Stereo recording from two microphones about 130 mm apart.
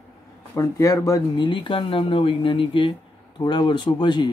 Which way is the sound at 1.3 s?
35° left (ahead or behind).